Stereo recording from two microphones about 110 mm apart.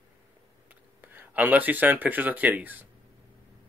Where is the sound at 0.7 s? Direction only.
15° right (ahead or behind).